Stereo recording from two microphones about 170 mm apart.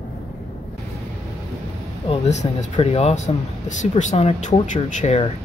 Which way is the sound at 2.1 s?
40° left (ahead or behind).